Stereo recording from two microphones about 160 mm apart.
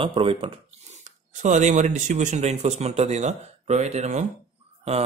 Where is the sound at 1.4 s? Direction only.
50° right (ahead or behind).